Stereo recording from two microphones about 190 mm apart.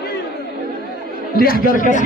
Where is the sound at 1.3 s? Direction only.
50° left (ahead or behind).